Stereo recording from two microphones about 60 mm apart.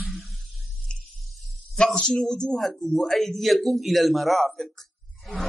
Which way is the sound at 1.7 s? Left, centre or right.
Centre.